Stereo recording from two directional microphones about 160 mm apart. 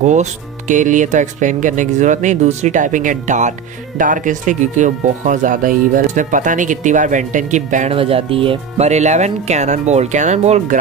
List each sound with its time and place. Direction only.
0.0 s speech: 50° right (ahead or behind)